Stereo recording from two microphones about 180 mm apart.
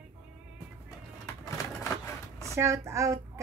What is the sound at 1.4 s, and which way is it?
Typewriter, 15° left (ahead or behind).